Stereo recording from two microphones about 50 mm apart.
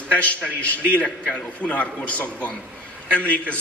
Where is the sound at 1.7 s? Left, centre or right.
Left.